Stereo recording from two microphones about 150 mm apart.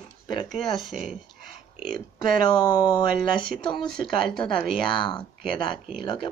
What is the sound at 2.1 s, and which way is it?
Speech, 25° left (ahead or behind).